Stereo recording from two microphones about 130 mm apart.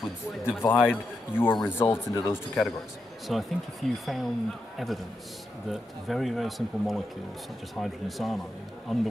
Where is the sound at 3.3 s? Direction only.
Centre (ahead or behind).